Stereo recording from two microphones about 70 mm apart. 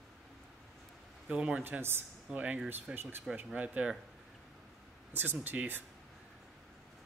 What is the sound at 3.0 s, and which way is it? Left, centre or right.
Speech, right.